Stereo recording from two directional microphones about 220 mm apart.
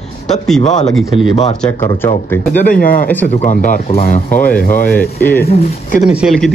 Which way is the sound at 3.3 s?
35° left (ahead or behind).